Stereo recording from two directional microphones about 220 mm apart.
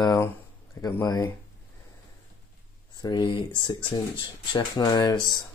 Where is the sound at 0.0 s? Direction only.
20° left (ahead or behind).